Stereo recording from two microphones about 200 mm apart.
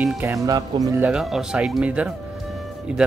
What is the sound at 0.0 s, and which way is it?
Speech, 5° right (ahead or behind).